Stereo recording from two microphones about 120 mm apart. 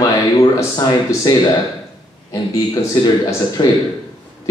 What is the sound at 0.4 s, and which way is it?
Speech, 30° left (ahead or behind).